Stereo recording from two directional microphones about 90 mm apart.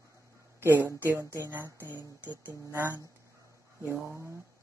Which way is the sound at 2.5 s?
30° right (ahead or behind).